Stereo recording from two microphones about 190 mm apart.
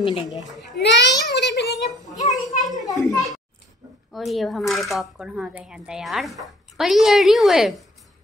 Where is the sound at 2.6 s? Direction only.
20° left (ahead or behind).